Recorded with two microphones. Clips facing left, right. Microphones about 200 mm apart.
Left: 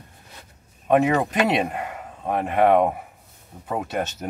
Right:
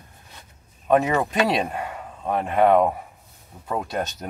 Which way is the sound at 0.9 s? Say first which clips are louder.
Left 1 dB; 10° left (ahead or behind).